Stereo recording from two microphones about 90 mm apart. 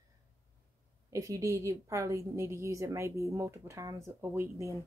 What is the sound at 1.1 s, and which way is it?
Speech, 35° right (ahead or behind).